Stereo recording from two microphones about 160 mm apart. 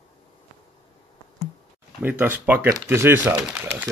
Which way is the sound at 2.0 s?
10° right (ahead or behind).